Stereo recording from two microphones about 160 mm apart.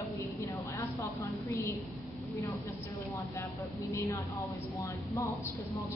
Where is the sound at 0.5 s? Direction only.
15° left (ahead or behind).